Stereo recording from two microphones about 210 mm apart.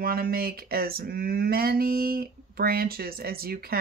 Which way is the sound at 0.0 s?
45° right (ahead or behind).